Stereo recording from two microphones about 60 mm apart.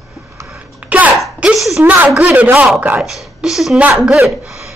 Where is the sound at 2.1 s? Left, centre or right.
Right.